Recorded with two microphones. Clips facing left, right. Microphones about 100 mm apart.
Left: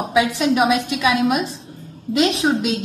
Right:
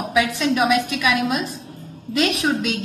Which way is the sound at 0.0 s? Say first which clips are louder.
Left 2 dB; 25° left (ahead or behind).